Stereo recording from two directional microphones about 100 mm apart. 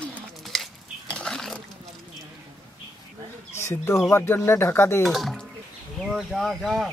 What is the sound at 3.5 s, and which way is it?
Speech, 25° left (ahead or behind).